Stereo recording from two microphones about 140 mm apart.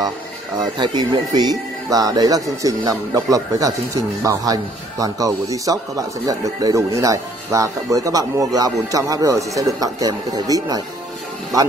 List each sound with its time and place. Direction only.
0.7 s speech: 30° right (ahead or behind)